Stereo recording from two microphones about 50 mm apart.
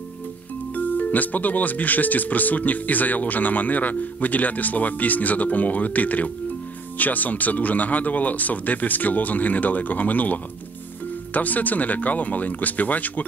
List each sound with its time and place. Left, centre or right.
0.7 s speech: left